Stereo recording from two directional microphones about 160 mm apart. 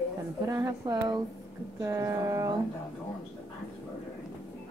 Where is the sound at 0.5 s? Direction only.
20° right (ahead or behind).